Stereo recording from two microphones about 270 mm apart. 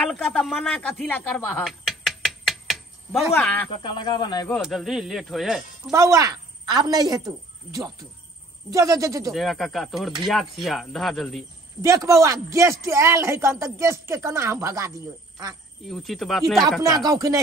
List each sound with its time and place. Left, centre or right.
0.0 s a sound: centre
3.4 s speech: centre
3.7 s speech: centre
4.6 s speech: centre
5.9 s a woman's voice: centre
8.7 s a man's voice: centre
9.3 s speech: centre
11.8 s a man's voice: centre
15.9 s speech: centre
16.8 s a man's voice: centre